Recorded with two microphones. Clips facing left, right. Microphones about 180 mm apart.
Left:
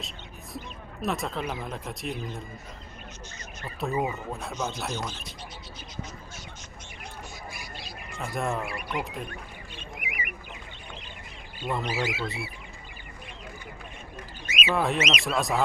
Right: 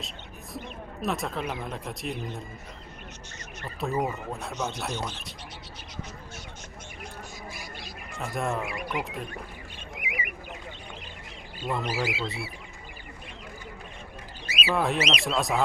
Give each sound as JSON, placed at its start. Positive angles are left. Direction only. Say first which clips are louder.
{"t": 1.0, "sound": "speech", "louder": "even", "side_deg": 0}
{"t": 3.8, "sound": "speech", "louder": "even", "side_deg": 0}
{"t": 8.2, "sound": "speech", "louder": "even", "side_deg": 0}
{"t": 8.6, "sound": "speech", "louder": "right 1 dB", "side_deg": -20}
{"t": 11.6, "sound": "speech", "louder": "even", "side_deg": 0}
{"t": 14.4, "sound": "rodents", "louder": "left 1 dB", "side_deg": -35}
{"t": 14.7, "sound": "speech", "louder": "even", "side_deg": 0}
{"t": 15.0, "sound": "speech", "louder": "even", "side_deg": -35}
{"t": 15.2, "sound": "speech", "louder": "even", "side_deg": 0}